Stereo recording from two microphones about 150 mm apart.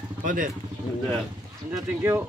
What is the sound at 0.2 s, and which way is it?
Speech, 60° right (ahead or behind).